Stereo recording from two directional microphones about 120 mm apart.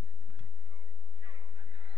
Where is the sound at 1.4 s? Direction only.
45° right (ahead or behind).